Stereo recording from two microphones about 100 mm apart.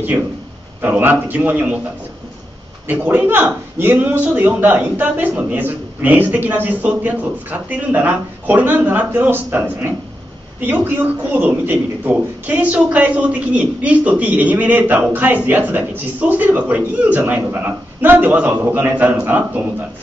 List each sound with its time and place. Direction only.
0.8 s a man's voice: 15° right (ahead or behind)
2.9 s a man's voice: 20° right (ahead or behind)